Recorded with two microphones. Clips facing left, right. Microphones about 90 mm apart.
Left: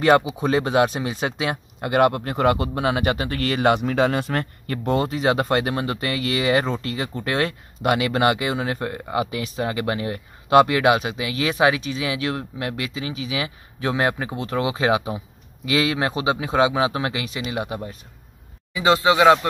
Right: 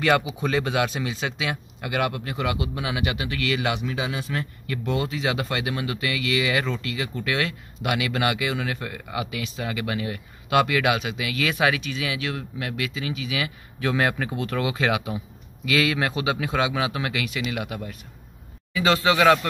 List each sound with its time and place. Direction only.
0.0 s speech: 35° left (ahead or behind)
3.9 s speech: 55° left (ahead or behind)
4.6 s speech: 45° left (ahead or behind); by 19.4 s 20° left (ahead or behind)